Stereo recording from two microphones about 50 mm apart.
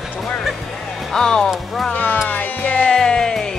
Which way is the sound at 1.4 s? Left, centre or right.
Centre.